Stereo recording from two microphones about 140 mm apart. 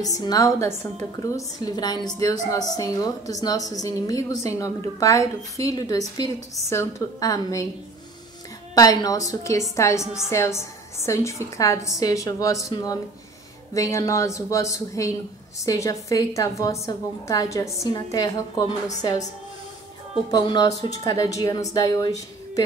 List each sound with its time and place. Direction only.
0.0 s a woman's voice: 25° left (ahead or behind)
8.7 s a woman's voice: 25° left (ahead or behind)
20.2 s a woman's voice: 30° left (ahead or behind)